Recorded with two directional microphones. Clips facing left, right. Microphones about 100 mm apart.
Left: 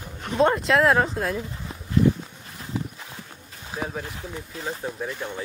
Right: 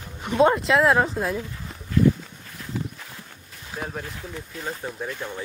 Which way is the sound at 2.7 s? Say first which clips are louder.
Left 1 dB; 20° left (ahead or behind).